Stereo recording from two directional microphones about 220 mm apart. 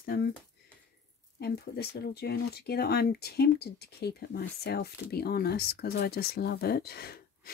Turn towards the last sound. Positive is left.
turn(degrees=45)  # may be behind; listen again after turning